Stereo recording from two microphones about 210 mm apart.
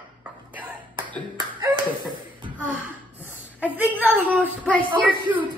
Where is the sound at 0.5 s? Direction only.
5° right (ahead or behind).